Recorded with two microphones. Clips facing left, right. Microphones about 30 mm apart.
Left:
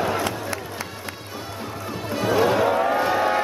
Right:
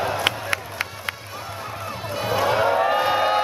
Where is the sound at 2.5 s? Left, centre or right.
Right.